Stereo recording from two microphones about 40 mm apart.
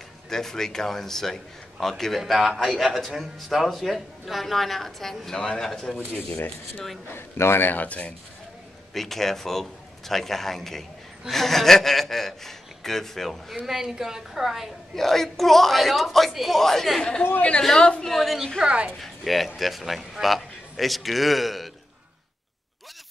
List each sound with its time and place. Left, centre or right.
0.3 s a man's voice: centre
7.2 s a man's voice: left
7.7 s speech: left
8.9 s a man's voice: centre
13.7 s a woman's voice: centre
15.0 s a woman's voice: centre
17.2 s a woman's voice: left
17.7 s a woman's voice: left
18.0 s a woman's voice: centre